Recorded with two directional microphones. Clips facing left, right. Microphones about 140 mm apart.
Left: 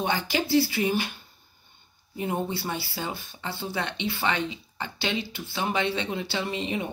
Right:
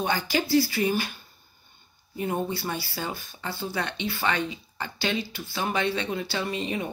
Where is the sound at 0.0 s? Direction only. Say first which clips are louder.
Right 1 dB; 20° left (ahead or behind).